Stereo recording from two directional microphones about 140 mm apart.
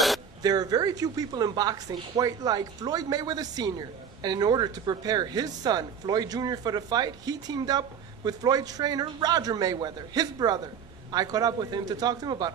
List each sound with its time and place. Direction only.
0.4 s speech: 25° right (ahead or behind)